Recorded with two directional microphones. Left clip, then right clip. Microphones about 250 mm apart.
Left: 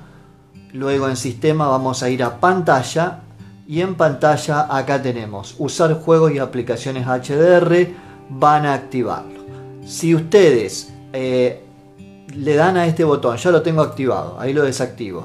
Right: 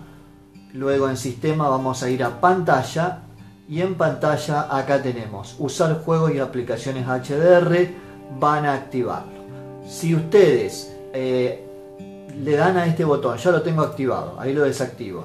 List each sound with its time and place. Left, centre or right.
0.7 s speech: left
12.4 s speech: left